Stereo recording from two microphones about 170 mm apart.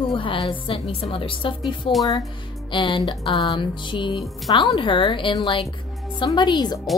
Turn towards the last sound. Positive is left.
turn(degrees=25)  # may be behind; listen again after turning